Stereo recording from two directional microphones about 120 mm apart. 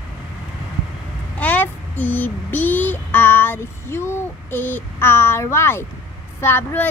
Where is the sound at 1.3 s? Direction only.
15° left (ahead or behind).